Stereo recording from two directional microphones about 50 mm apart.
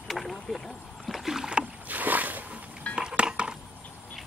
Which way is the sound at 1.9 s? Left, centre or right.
Right.